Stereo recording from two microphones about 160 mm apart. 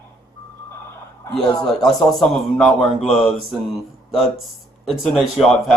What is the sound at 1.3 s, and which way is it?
Speech, 5° left (ahead or behind).